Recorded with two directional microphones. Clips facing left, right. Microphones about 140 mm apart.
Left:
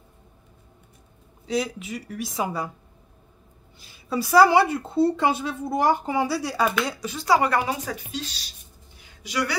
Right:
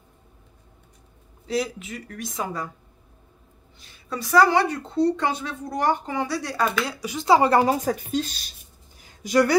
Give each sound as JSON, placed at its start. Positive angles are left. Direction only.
{"t": 1.4, "sound": "speech", "side_deg": 0}
{"t": 4.1, "sound": "speech", "side_deg": 5}
{"t": 7.2, "sound": "a woman's voice", "side_deg": -30}
{"t": 7.7, "sound": "speech", "side_deg": -45}
{"t": 9.0, "sound": "a sound", "side_deg": -45}